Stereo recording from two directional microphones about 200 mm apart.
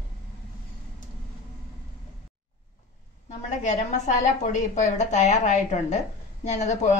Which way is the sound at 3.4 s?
35° left (ahead or behind).